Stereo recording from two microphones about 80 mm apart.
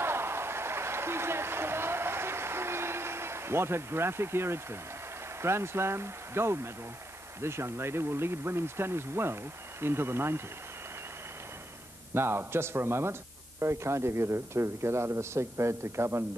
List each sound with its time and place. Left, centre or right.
0.0 s applause: right
5.4 s speech: right
12.1 s speech: right